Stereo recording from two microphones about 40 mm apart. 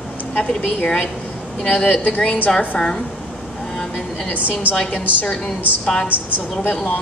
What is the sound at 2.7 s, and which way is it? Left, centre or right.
Speech, left.